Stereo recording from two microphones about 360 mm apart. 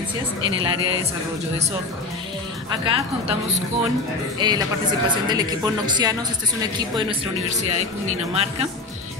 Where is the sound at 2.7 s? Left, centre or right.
Centre.